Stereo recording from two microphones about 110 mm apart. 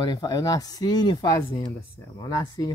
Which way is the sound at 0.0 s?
40° left (ahead or behind).